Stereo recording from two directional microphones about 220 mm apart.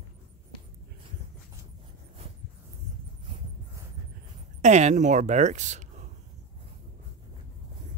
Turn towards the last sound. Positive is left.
turn(degrees=-30)  # may be behind; listen again after turning